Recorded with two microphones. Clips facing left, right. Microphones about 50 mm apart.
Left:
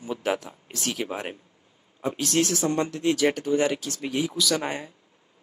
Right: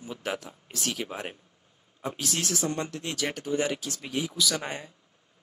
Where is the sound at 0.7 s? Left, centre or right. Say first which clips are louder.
Left 2 dB; centre.